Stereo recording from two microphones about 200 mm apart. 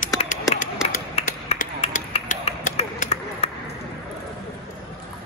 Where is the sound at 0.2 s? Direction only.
40° left (ahead or behind).